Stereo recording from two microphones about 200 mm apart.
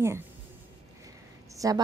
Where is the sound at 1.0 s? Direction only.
15° right (ahead or behind).